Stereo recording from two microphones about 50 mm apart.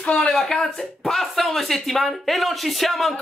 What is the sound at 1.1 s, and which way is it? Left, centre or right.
A woman's voice, centre.